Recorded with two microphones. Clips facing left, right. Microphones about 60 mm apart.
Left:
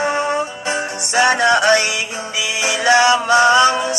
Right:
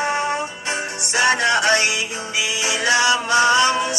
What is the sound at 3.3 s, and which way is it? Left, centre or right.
Music, left.